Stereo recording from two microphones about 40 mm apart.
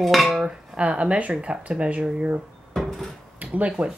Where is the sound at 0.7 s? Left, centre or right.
Right.